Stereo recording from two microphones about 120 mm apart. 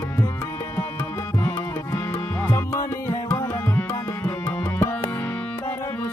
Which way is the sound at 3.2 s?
15° left (ahead or behind).